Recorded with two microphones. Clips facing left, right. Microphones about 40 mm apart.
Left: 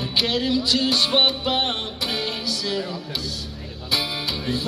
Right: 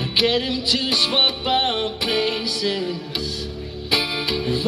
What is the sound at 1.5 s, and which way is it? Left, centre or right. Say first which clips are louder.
Music: right 4 dB; right.